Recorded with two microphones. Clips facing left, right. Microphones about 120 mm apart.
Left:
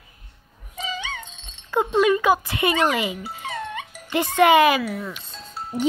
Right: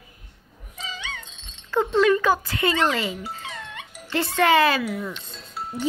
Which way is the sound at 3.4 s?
55° left (ahead or behind).